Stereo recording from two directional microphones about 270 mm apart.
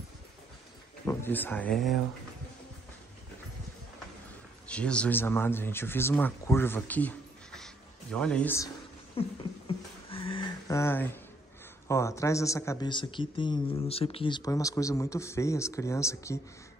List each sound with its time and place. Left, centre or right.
1.0 s speech: centre
4.6 s speech: centre
9.2 s a sound: left
11.9 s speech: centre